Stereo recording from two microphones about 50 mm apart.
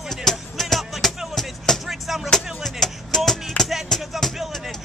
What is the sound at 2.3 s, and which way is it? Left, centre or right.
Music, centre.